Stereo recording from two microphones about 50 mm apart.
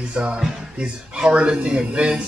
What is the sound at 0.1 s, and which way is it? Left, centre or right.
Speech, right.